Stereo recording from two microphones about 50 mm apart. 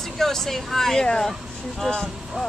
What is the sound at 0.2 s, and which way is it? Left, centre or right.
Speech, centre.